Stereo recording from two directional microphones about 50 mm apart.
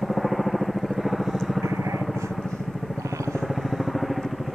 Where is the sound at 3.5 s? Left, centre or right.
Centre.